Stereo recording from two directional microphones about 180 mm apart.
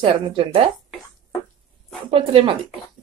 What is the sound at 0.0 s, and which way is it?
Speech, 30° right (ahead or behind).